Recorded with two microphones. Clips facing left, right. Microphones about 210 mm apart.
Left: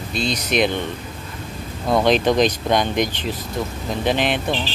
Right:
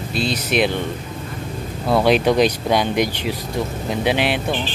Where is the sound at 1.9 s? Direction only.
10° right (ahead or behind).